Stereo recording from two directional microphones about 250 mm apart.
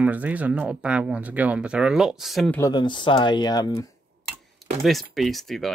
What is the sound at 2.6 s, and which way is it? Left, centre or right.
Speech, centre.